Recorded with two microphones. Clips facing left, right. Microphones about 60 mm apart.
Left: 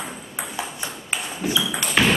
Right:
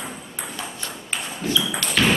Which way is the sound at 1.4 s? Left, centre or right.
Centre.